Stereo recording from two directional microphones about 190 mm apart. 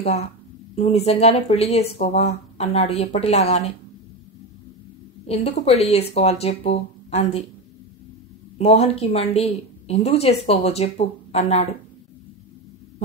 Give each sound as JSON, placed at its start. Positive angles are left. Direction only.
{"t": 0.7, "sound": "a woman's voice", "side_deg": 30}
{"t": 5.2, "sound": "a woman's voice", "side_deg": 35}
{"t": 8.5, "sound": "a woman's voice", "side_deg": 30}